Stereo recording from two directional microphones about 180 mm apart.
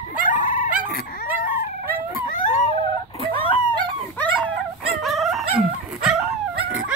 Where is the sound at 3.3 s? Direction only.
30° left (ahead or behind).